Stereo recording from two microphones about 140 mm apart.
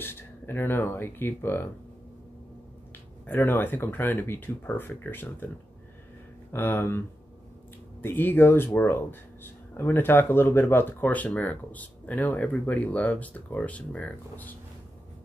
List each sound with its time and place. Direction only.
0.0 s speech: 15° left (ahead or behind)
3.3 s speech: 15° left (ahead or behind)
6.5 s speech: 15° left (ahead or behind)